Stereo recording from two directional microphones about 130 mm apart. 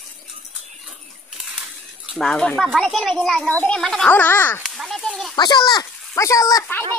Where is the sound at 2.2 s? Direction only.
5° left (ahead or behind).